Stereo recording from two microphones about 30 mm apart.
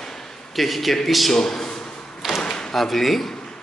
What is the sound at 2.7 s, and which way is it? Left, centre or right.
Speech, centre.